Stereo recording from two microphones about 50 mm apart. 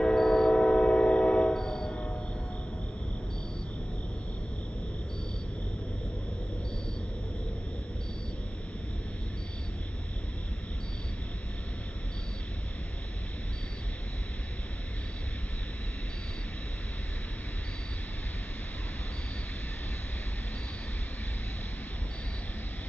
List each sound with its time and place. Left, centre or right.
0.0 s train: centre
1.6 s music: centre